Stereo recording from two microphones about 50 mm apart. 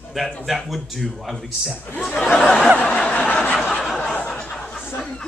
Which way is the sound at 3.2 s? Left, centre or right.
Left.